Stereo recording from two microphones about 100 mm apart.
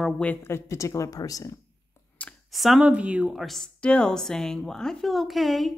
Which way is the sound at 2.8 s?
15° right (ahead or behind).